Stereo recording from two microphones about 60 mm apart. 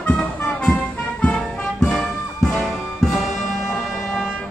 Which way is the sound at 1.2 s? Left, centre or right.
Centre.